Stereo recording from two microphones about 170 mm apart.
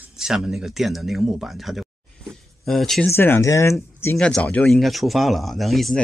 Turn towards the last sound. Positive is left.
turn(degrees=0)  # may be behind; listen again after turning